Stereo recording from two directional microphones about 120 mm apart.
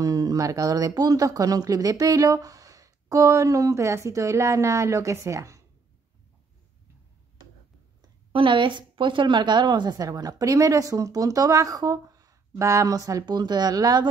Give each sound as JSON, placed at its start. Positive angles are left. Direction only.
{"t": 0.0, "sound": "speech", "side_deg": -30}
{"t": 8.3, "sound": "a woman's voice", "side_deg": -45}